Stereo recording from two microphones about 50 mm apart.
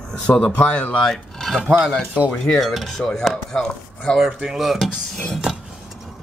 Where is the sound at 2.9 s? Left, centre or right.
Centre.